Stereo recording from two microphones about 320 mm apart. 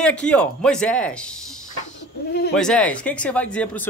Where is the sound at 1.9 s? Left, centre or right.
Left.